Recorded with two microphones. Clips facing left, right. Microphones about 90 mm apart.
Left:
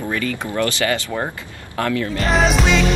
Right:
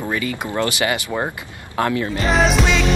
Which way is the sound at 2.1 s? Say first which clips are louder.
Even; centre (ahead or behind).